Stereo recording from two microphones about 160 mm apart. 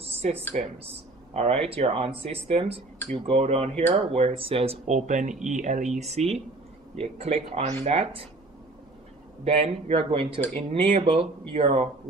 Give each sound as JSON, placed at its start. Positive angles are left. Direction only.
{"t": 0.0, "sound": "a sound", "side_deg": -40}
{"t": 0.6, "sound": "speech", "side_deg": -45}
{"t": 9.4, "sound": "speech", "side_deg": -40}